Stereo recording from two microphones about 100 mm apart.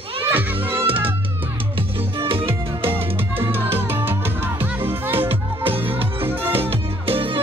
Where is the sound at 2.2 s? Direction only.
65° right (ahead or behind).